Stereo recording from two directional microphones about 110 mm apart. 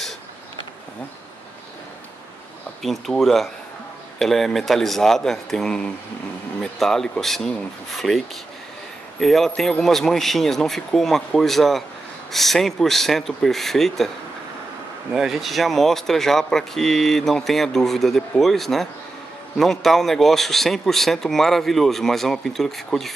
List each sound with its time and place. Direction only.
2.8 s speech: centre (ahead or behind)
9.2 s speech: centre (ahead or behind)
15.1 s speech: centre (ahead or behind)